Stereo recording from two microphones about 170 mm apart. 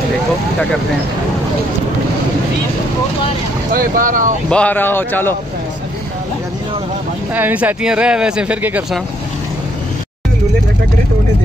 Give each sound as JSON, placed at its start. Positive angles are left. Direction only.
{"t": 3.7, "sound": "speech", "side_deg": -55}
{"t": 4.5, "sound": "speech", "side_deg": 10}
{"t": 7.3, "sound": "speech", "side_deg": -10}